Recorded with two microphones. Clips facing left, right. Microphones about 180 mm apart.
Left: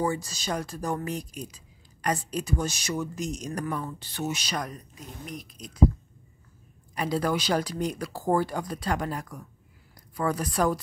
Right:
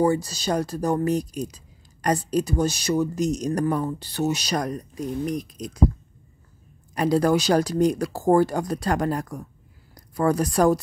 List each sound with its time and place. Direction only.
0.0 s speech: 35° right (ahead or behind)
7.0 s speech: 45° right (ahead or behind)